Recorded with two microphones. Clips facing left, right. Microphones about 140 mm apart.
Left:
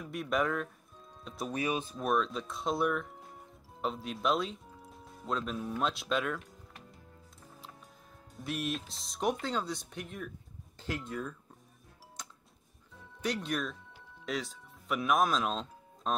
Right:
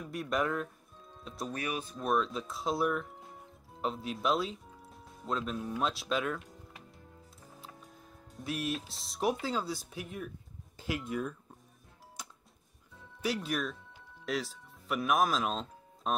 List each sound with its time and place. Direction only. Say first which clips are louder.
0.0 s speech: left 1 dB; centre (ahead or behind)
1.5 s speech: left 4 dB; 25° left (ahead or behind)
2.0 s speech: right 3 dB; centre (ahead or behind)
8.4 s speech: even; centre (ahead or behind)
13.2 s speech: right 1 dB; 5° right (ahead or behind)